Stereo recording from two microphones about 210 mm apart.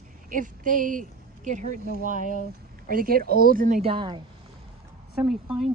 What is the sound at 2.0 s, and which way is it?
A woman's voice, 40° right (ahead or behind).